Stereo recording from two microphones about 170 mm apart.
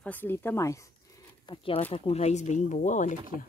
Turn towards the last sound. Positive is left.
turn(degrees=45)  # may be behind; listen again after turning